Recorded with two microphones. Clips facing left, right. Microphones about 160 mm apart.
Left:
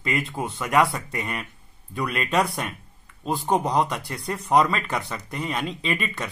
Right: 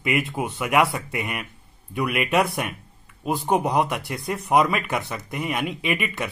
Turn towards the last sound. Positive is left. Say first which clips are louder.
# right 2 dB
turn(degrees=-15)  # may be behind; listen again after turning